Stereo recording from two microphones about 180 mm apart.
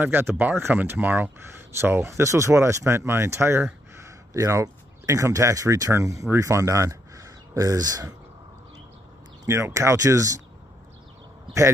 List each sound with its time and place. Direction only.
0.0 s speech: 10° right (ahead or behind)
9.5 s speech: 15° right (ahead or behind)